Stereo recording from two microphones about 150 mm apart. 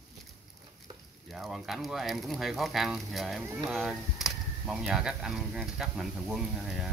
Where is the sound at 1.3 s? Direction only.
Centre (ahead or behind).